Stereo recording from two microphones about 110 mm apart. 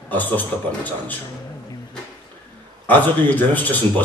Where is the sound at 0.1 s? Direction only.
15° left (ahead or behind).